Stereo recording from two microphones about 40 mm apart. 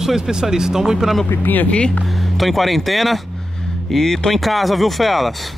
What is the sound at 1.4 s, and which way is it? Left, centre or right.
Speech, left.